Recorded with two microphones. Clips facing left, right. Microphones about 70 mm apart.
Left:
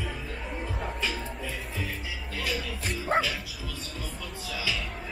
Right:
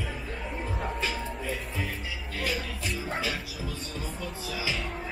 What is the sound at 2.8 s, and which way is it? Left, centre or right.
Music, left.